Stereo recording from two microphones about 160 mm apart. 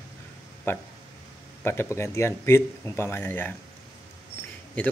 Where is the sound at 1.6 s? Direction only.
15° left (ahead or behind).